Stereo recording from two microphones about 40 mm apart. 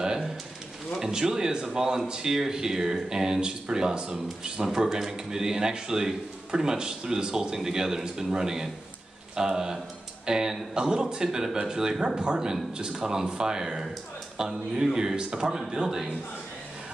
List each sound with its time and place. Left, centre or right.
0.0 s pigeon: centre
0.9 s a man's voice: centre